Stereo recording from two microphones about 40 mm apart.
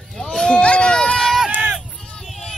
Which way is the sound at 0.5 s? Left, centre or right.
Left.